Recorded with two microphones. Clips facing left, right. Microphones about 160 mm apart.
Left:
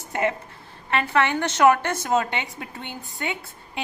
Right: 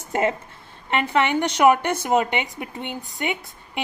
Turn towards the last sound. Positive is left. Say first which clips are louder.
# right 3 dB
turn(degrees=-15)  # may be behind; listen again after turning